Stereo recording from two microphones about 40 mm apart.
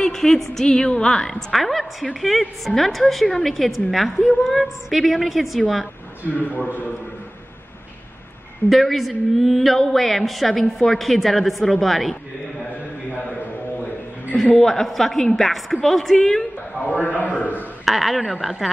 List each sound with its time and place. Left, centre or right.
0.0 s speech: centre
0.7 s a woman's voice: left
1.5 s a woman's voice: centre
6.3 s a man's voice: left
8.6 s a woman's voice: centre
14.6 s a woman's voice: centre
16.9 s a man's voice: left
17.8 s a woman's voice: centre